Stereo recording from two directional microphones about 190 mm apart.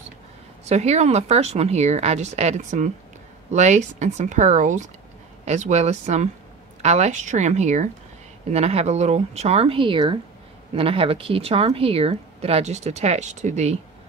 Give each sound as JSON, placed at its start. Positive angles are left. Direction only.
{"t": 0.7, "sound": "a woman's voice", "side_deg": -35}